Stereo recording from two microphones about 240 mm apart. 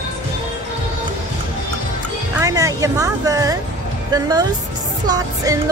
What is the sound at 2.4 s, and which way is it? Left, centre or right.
Music, centre.